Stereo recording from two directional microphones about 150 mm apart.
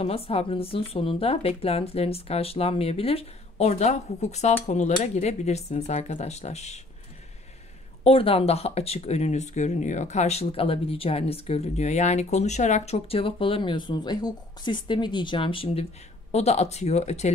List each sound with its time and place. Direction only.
0.0 s speech: 40° left (ahead or behind)
8.0 s speech: 40° left (ahead or behind)